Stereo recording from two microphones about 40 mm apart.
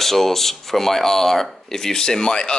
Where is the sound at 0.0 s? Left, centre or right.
Centre.